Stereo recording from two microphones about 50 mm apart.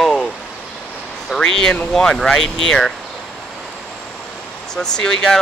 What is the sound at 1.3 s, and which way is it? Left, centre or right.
Speech, centre.